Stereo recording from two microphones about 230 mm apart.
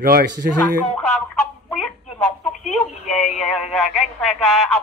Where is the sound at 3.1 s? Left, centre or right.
Left.